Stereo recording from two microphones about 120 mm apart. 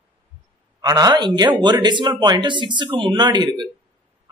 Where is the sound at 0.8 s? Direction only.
35° right (ahead or behind).